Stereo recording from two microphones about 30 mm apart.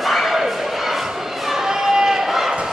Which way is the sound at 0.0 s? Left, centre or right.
Centre.